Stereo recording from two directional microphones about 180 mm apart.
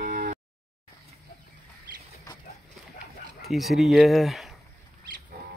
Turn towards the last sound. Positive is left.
turn(degrees=0)  # may be behind; listen again after turning